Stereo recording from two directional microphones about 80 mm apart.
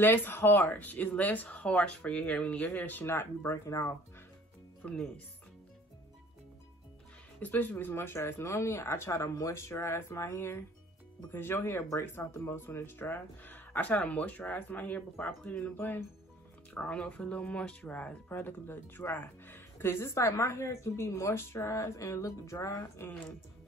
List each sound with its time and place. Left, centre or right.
0.0 s speech: left
4.8 s speech: centre
7.4 s speech: left